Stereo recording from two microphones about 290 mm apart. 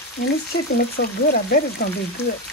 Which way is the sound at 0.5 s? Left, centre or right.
Left.